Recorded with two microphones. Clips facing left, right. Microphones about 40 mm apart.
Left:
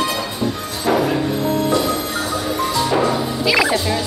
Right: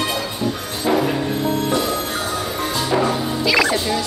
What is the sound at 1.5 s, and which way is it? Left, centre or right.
Music, right.